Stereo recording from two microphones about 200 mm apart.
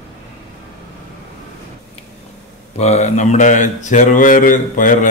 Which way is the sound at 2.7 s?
35° left (ahead or behind).